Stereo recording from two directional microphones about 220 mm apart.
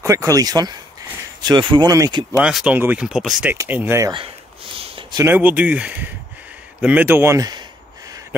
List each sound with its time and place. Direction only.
0.0 s speech: 15° right (ahead or behind)
2.4 s speech: 5° right (ahead or behind)
4.7 s a sound: 25° right (ahead or behind)
5.2 s speech: 10° right (ahead or behind)